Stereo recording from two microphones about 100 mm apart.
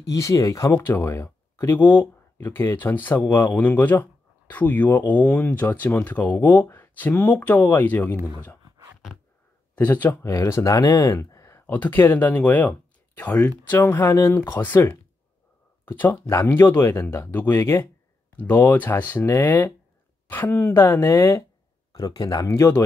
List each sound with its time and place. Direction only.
0.1 s speech: 35° left (ahead or behind)
0.7 s speech: 20° left (ahead or behind)
8.6 s a sound: 35° right (ahead or behind)
9.8 s speech: 20° left (ahead or behind)
10.2 s speech: 30° left (ahead or behind)
11.6 s speech: 20° left (ahead or behind)
21.9 s speech: 35° left (ahead or behind)